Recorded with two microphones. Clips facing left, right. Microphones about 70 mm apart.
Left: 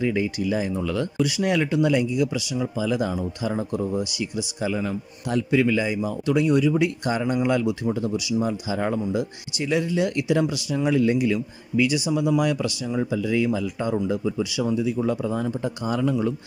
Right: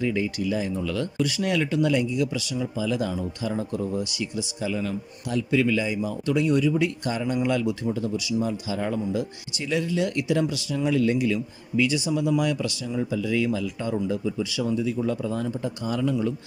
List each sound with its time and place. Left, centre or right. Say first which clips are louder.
0.0 s speech: left 2 dB; left
1.1 s speech: left 3 dB; centre; by 16.3 s left